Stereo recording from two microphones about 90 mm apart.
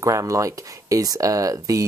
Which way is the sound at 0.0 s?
35° right (ahead or behind).